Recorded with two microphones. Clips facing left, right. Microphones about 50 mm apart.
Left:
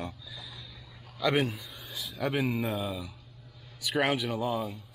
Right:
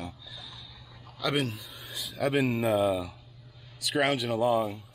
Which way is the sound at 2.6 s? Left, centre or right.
Centre.